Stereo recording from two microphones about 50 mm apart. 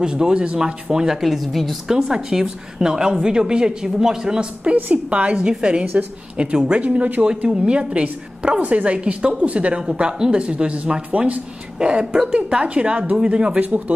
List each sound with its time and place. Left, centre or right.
0.0 s a woman's voice: centre
1.9 s a woman's voice: centre; by 7.2 s right
7.2 s a woman's voice: centre
13.7 s speech: right